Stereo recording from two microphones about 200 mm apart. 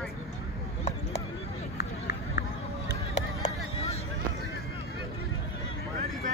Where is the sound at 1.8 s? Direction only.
55° left (ahead or behind).